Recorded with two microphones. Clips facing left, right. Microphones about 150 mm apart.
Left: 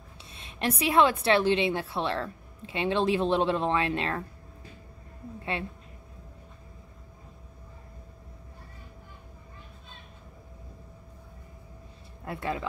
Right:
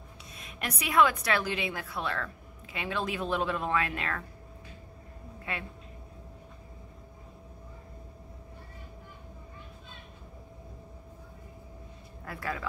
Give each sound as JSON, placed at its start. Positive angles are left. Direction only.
{"t": 0.3, "sound": "a woman's voice", "side_deg": 30}
{"t": 5.4, "sound": "speech", "side_deg": 30}
{"t": 12.3, "sound": "a woman's voice", "side_deg": 25}